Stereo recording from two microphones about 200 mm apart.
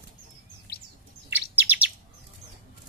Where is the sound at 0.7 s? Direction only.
55° left (ahead or behind).